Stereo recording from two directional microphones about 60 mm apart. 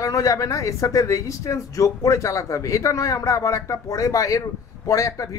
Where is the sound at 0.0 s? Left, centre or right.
Left.